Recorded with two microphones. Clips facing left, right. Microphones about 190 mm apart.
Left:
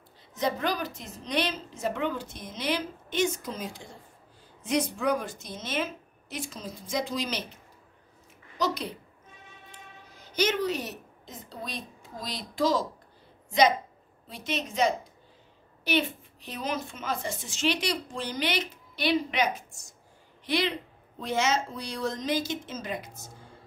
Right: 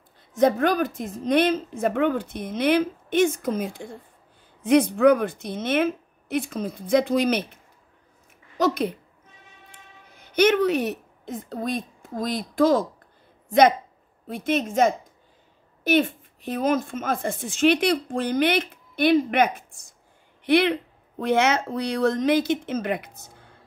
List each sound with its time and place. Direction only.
0.3 s a woman's voice: 50° right (ahead or behind)
8.5 s a woman's voice: 50° right (ahead or behind)
10.1 s a woman's voice: 60° right (ahead or behind)